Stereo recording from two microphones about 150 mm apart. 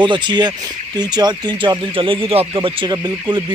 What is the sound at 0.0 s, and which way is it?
Speech, 30° right (ahead or behind).